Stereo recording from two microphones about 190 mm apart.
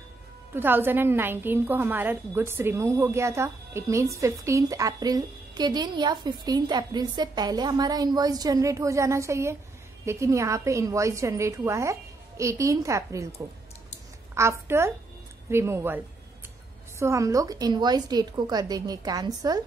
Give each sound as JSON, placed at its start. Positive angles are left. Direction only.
{"t": 0.6, "sound": "a woman's voice", "side_deg": -10}
{"t": 14.3, "sound": "a woman's voice", "side_deg": -15}
{"t": 17.0, "sound": "a woman's voice", "side_deg": -15}